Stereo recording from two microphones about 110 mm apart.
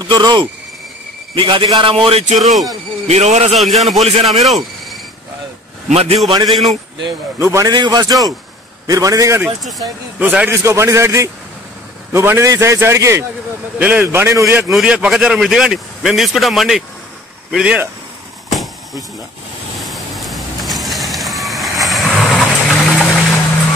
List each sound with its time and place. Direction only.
0.1 s a man's voice: 40° right (ahead or behind); by 2.3 s 65° right (ahead or behind)
2.3 s a man's voice: centre (ahead or behind)
3.1 s a man's voice: 90° right
3.5 s a man's voice: centre (ahead or behind)
5.9 s a man's voice: 70° right (ahead or behind)
6.4 s a man's voice: centre (ahead or behind)
7.3 s a man's voice: 25° right (ahead or behind)
9.6 s a man's voice: centre (ahead or behind)
10.1 s a man's voice: 15° right (ahead or behind)
10.6 s a man's voice: 25° right (ahead or behind)
13.7 s a man's voice: 15° right (ahead or behind)
14.7 s a man's voice: 5° right (ahead or behind)
19.8 s vehicle: centre (ahead or behind)